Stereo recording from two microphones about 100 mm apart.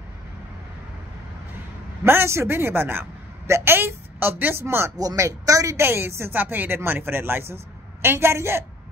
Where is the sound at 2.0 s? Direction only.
25° right (ahead or behind).